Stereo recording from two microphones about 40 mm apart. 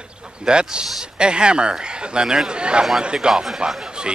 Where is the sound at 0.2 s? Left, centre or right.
Right.